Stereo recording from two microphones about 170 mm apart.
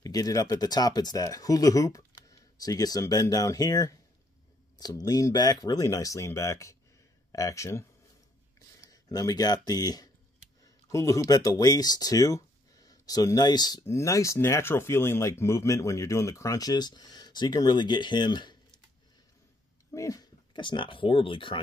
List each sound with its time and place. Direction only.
0.0 s a man's voice: 20° left (ahead or behind)
8.9 s speech: 20° left (ahead or behind)
19.9 s speech: 20° left (ahead or behind)